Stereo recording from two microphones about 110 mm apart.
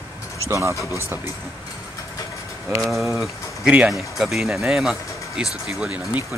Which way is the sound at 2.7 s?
Centre (ahead or behind).